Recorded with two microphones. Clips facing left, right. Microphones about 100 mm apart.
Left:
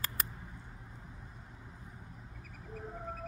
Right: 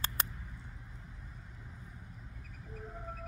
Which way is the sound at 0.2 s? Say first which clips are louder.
Right 2 dB; 25° right (ahead or behind).